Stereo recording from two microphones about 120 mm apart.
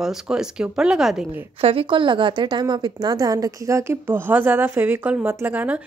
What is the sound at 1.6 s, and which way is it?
A woman's voice, 55° right (ahead or behind).